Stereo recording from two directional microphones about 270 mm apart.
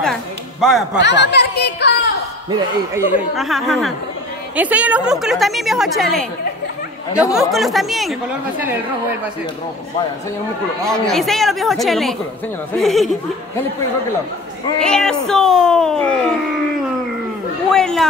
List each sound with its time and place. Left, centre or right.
0.0 s a sound: centre
1.0 s a sound: left
2.5 s a woman's voice: centre
10.8 s a woman's voice: centre
14.8 s a woman's voice: centre
17.6 s speech: centre